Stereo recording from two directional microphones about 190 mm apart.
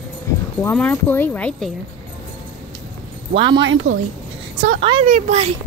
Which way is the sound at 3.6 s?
90° right.